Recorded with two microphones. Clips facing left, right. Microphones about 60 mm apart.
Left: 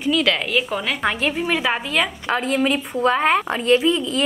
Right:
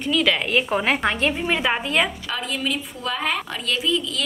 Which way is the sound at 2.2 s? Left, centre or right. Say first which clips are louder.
Left 7 dB; left.